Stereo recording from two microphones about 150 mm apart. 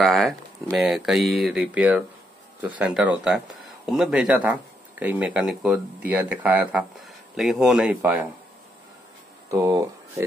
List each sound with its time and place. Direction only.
0.0 s speech: centre (ahead or behind)
9.5 s speech: 20° right (ahead or behind)